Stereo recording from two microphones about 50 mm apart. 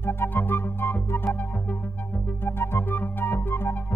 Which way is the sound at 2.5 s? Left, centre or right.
Left.